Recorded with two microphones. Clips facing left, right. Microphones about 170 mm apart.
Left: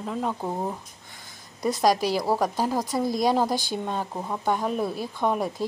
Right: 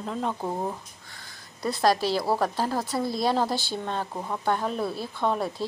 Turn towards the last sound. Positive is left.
turn(degrees=15)  # may be behind; listen again after turning